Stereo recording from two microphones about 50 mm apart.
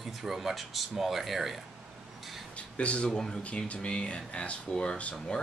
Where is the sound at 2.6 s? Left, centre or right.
Left.